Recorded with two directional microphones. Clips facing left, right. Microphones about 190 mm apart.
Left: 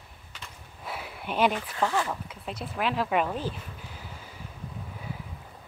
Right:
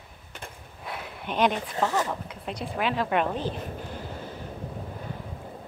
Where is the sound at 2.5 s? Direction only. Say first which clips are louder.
Right 2 dB; centre (ahead or behind).